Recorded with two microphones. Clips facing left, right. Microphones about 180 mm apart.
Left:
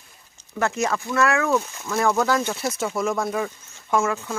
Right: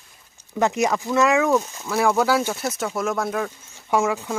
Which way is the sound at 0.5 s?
15° right (ahead or behind).